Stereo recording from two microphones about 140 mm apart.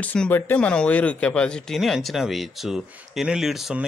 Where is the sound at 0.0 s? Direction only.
10° left (ahead or behind).